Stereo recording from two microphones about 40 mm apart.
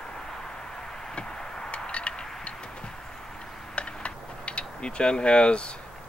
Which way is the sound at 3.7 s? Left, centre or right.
Left.